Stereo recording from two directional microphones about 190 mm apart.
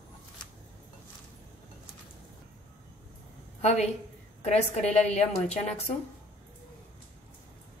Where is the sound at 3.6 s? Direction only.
35° left (ahead or behind).